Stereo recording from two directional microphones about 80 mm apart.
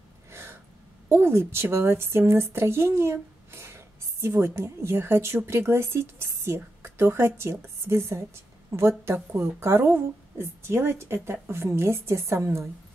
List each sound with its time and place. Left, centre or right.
0.3 s gasp: right
1.0 s a woman's voice: right